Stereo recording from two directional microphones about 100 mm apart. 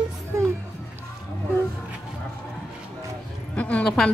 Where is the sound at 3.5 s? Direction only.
15° left (ahead or behind).